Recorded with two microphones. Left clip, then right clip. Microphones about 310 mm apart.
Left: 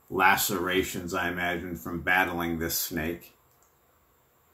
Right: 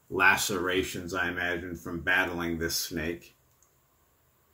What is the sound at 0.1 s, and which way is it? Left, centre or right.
Speech, centre.